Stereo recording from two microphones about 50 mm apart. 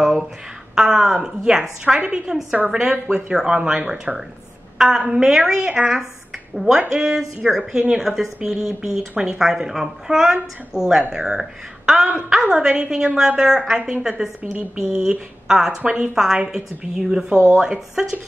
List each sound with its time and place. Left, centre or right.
0.0 s a sound: centre
0.7 s speech: centre
2.0 s a woman's voice: right
2.7 s a woman's voice: centre
12.5 s speech: centre
13.7 s a woman's voice: right
14.0 s speech: centre
15.8 s a woman's voice: right
16.4 s speech: centre